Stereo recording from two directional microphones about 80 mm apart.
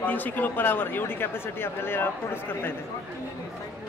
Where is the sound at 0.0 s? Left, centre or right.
Left.